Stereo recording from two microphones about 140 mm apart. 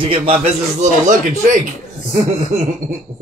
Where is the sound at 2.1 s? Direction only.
55° right (ahead or behind).